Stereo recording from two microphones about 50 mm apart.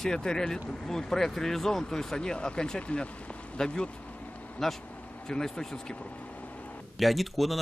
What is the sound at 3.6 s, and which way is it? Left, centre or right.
Vehicle, centre.